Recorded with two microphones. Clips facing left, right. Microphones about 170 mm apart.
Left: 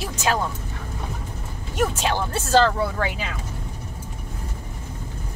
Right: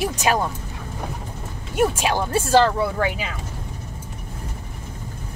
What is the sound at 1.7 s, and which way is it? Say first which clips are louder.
Speech: right 3 dB; 10° right (ahead or behind).